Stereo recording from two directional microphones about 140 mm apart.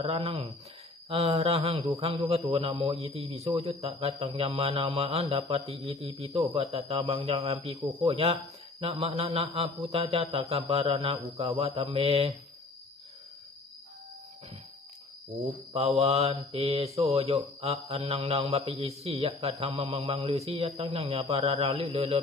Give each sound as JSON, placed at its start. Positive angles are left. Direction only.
{"t": 0.0, "sound": "a man's voice", "side_deg": -45}
{"t": 11.7, "sound": "mantra", "side_deg": -35}
{"t": 16.0, "sound": "a man's voice", "side_deg": -50}